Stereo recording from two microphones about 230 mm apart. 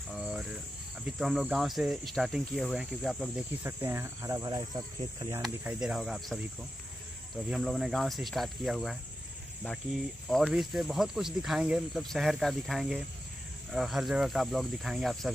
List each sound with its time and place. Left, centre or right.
0.1 s cricket: centre
5.4 s cricket: centre
7.4 s cricket: centre
10.2 s cricket: centre